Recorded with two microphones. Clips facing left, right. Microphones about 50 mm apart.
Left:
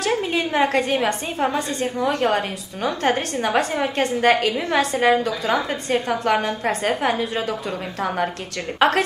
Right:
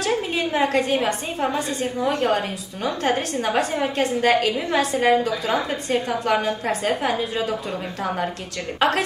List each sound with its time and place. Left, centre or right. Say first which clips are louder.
0.3 s a woman's voice: left 2 dB; left
8.7 s a woman's voice: left 3 dB; left